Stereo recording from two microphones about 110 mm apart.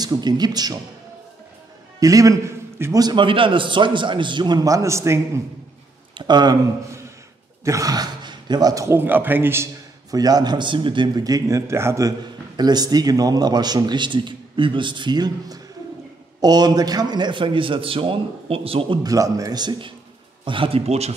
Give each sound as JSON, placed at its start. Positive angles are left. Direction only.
{"t": 0.0, "sound": "a man's voice", "side_deg": -40}
{"t": 2.0, "sound": "a man's voice", "side_deg": -30}
{"t": 6.1, "sound": "a man's voice", "side_deg": -40}
{"t": 7.6, "sound": "a man's voice", "side_deg": -30}
{"t": 10.1, "sound": "a man's voice", "side_deg": -35}
{"t": 12.5, "sound": "a man's voice", "side_deg": -40}
{"t": 19.0, "sound": "a man's voice", "side_deg": -30}
{"t": 20.4, "sound": "speech", "side_deg": -55}